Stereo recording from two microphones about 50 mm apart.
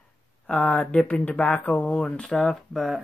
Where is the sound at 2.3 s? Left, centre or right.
Centre.